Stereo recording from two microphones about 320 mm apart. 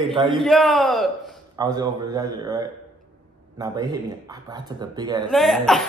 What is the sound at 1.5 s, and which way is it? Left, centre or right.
Speech, centre.